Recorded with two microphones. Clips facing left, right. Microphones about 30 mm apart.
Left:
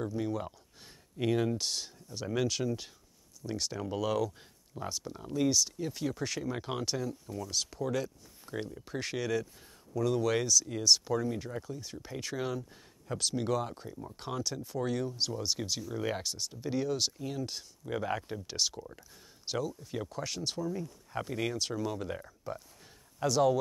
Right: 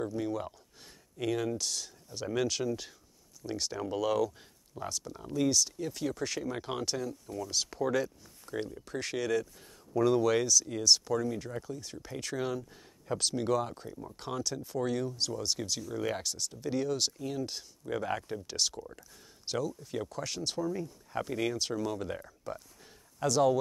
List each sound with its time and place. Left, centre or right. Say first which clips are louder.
0.0 s a sound: right 1 dB; centre
1.2 s speech: left 2 dB; centre
2.1 s speech: right 1 dB; centre
8.8 s speech: right 1 dB; centre
9.9 s speech: right 4 dB; centre
10.2 s speech: right 2 dB; centre